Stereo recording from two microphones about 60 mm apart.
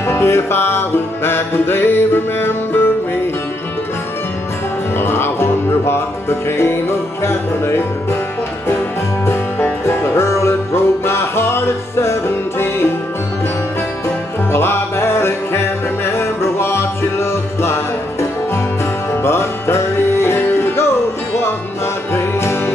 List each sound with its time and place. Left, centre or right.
0.0 s music: left
4.9 s music: left
14.5 s music: left
19.2 s music: left
22.1 s music: left